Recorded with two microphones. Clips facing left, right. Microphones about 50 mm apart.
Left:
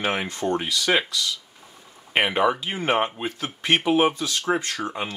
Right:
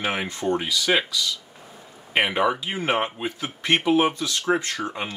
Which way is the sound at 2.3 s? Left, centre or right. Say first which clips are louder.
Left 2 dB; centre.